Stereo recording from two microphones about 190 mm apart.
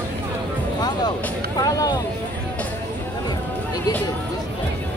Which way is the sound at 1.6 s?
20° left (ahead or behind).